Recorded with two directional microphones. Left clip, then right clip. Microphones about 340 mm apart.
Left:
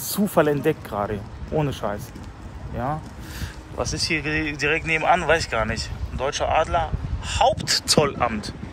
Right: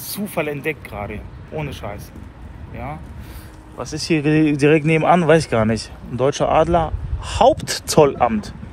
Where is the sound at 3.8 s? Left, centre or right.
Centre.